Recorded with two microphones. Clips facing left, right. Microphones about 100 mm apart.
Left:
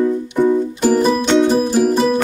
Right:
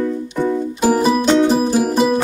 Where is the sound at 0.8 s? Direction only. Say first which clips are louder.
Right 3 dB; 5° right (ahead or behind).